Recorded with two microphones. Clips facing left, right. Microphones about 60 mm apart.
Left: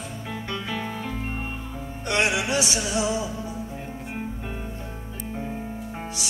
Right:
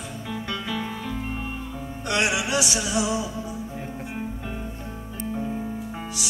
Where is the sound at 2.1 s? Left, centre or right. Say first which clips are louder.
Left 1 dB; left.